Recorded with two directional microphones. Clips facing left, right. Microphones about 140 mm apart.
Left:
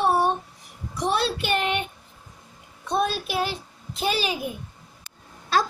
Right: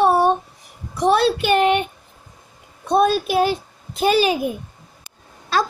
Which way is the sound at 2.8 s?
50° right (ahead or behind).